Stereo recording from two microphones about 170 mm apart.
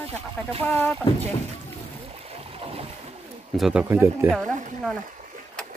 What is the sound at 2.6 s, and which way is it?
Boat, 35° right (ahead or behind).